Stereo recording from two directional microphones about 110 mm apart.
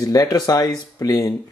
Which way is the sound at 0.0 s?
35° left (ahead or behind).